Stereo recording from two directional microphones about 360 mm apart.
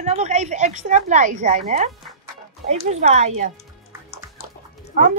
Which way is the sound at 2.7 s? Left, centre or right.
Centre.